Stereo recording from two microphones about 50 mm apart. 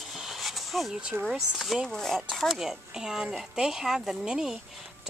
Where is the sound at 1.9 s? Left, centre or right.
Centre.